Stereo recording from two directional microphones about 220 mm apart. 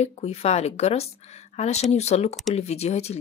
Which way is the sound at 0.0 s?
30° left (ahead or behind).